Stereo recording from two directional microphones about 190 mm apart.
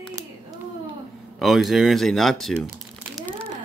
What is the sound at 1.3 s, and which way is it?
Speech, centre (ahead or behind).